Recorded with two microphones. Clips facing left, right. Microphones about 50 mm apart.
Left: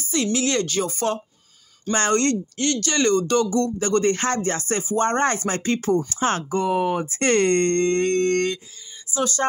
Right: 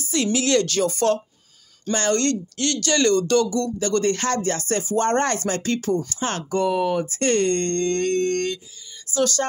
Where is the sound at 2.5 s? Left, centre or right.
Centre.